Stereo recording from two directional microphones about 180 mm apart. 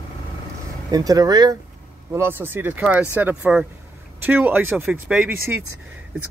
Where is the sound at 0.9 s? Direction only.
20° right (ahead or behind).